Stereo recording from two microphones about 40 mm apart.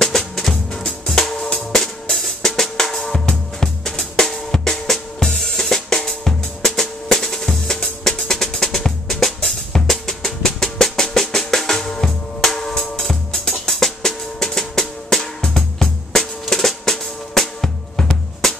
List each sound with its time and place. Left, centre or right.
0.0 s music: centre
1.7 s drum: centre